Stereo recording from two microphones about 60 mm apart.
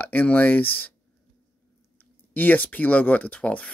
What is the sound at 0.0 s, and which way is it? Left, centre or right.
Speech, left.